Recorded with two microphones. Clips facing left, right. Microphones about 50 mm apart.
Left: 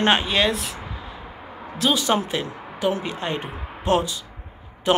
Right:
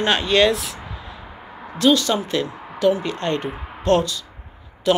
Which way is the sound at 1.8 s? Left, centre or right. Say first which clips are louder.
Right 3 dB; centre.